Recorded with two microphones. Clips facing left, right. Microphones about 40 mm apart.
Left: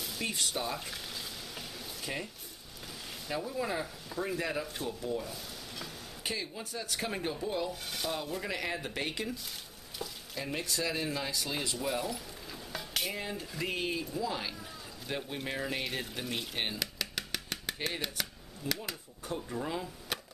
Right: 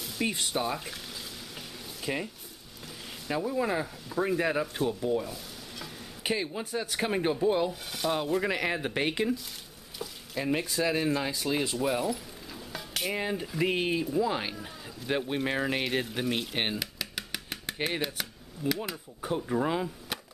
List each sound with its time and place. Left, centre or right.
0.2 s speech: centre
2.1 s speech: centre
3.3 s speech: centre
4.4 s speech: right
5.2 s stir: centre
6.2 s speech: right
9.9 s speech: centre
12.7 s dishes: centre
13.1 s speech: right
16.7 s a sound: centre
19.2 s speech: right